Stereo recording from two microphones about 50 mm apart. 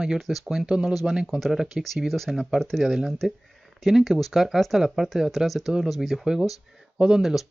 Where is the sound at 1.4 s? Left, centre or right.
Centre.